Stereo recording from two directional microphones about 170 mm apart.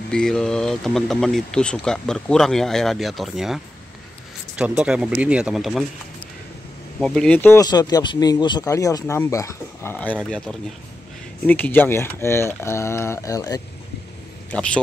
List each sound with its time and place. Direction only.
0.1 s speech: 5° left (ahead or behind)
7.0 s speech: 5° left (ahead or behind)
7.6 s speech: 25° left (ahead or behind)
14.5 s a man's voice: 5° left (ahead or behind)